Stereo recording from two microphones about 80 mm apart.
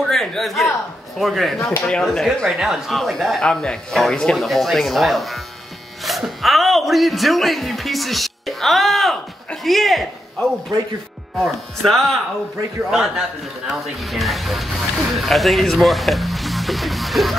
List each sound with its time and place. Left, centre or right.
0.1 s speech: centre
1.6 s speech: left
1.9 s speech: centre